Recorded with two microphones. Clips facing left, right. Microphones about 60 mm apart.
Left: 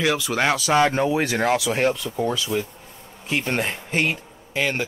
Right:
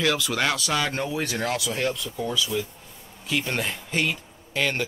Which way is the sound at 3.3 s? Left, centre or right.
Left.